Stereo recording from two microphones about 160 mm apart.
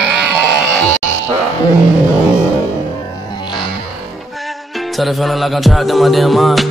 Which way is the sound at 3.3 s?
30° left (ahead or behind).